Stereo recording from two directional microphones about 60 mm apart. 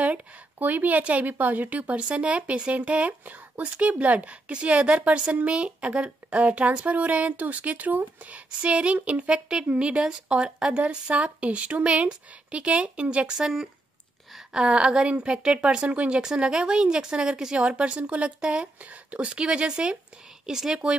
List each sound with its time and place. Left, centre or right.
0.0 s a woman's voice: right
13.4 s speech: centre